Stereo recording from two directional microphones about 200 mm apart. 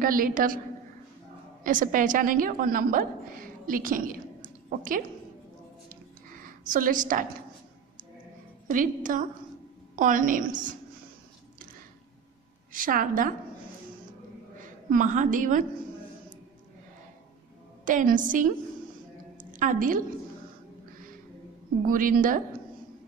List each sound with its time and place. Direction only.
0.0 s a woman's voice: 45° right (ahead or behind)
1.6 s a woman's voice: 40° right (ahead or behind)
6.4 s a woman's voice: 40° right (ahead or behind)
8.6 s a woman's voice: 40° right (ahead or behind)
12.7 s a woman's voice: 40° right (ahead or behind)
14.9 s a woman's voice: 40° right (ahead or behind)
17.8 s a woman's voice: 40° right (ahead or behind)
19.3 s a sound: 40° right (ahead or behind)
21.8 s a woman's voice: 45° right (ahead or behind)